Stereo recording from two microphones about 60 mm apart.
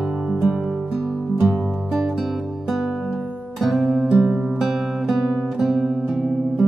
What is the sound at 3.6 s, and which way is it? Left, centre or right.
Guitar, centre.